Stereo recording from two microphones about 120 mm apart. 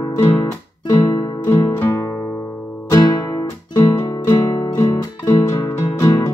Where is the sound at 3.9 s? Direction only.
25° left (ahead or behind).